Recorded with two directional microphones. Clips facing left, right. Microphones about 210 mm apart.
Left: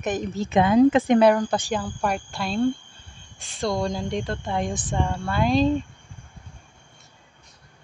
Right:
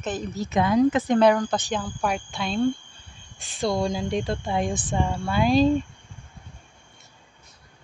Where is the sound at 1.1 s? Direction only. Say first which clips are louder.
Left 1 dB; 10° left (ahead or behind).